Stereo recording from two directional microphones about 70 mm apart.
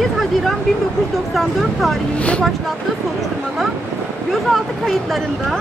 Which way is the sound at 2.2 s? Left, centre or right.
Centre.